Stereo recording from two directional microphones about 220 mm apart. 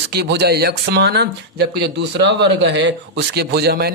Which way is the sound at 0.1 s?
50° right (ahead or behind).